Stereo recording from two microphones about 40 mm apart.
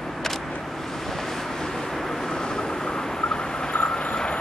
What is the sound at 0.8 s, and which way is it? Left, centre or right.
Vehicle, centre.